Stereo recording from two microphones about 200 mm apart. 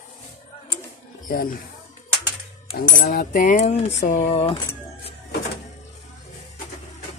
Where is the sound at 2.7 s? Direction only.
45° left (ahead or behind).